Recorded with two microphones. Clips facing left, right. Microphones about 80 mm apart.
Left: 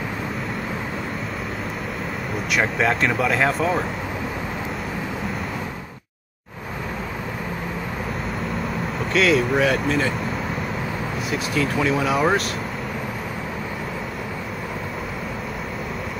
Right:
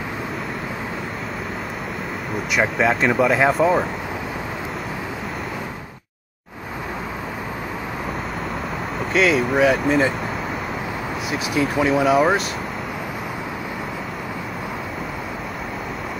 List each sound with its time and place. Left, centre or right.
2.5 s speech: centre
9.1 s speech: centre
11.5 s speech: centre